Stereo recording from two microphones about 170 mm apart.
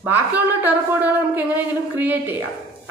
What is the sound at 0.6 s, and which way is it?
A woman's voice, 10° right (ahead or behind).